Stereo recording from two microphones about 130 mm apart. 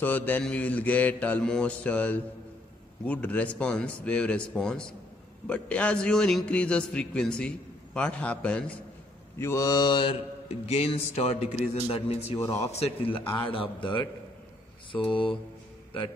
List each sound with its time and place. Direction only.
0.0 s a man's voice: 15° left (ahead or behind)
9.4 s mantra: 25° left (ahead or behind)
10.7 s a man's voice: 50° left (ahead or behind)
12.4 s mantra: 20° left (ahead or behind)
12.7 s a man's voice: 50° left (ahead or behind)
14.9 s mantra: 40° left (ahead or behind)